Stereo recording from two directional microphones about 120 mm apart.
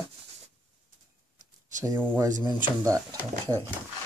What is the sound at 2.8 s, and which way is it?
Speech, 25° right (ahead or behind).